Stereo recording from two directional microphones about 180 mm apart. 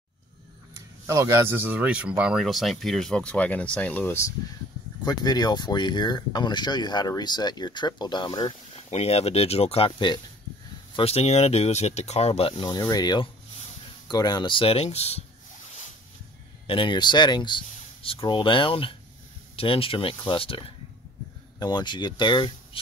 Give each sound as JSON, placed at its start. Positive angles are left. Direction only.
{"t": 1.0, "sound": "speech", "side_deg": -15}
{"t": 8.7, "sound": "speech", "side_deg": 35}
{"t": 16.6, "sound": "speech", "side_deg": 25}